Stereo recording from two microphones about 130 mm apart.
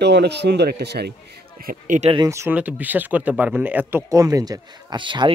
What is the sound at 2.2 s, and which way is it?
Speech, 20° right (ahead or behind).